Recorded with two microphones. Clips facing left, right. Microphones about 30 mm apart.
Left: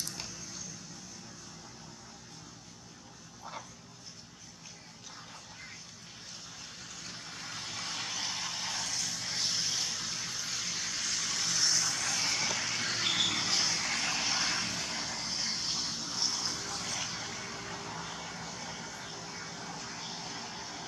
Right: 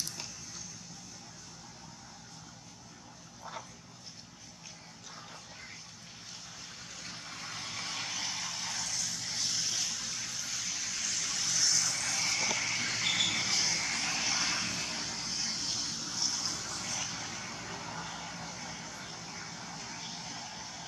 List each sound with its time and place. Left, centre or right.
7.0 s vehicle: centre
13.5 s vehicle: left
15.2 s a sound: left
16.2 s vehicle: centre